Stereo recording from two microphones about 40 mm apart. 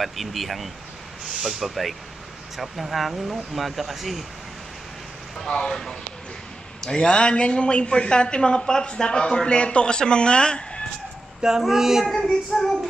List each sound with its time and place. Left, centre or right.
0.0 s speech: centre
5.4 s child singing: centre
6.8 s a woman's voice: centre
11.6 s speech: centre
12.1 s child singing: centre